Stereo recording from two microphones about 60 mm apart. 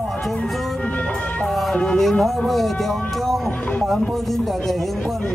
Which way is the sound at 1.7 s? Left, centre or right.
Centre.